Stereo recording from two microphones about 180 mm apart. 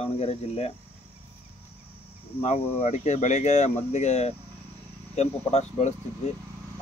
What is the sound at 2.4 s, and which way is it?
Speech, 35° left (ahead or behind).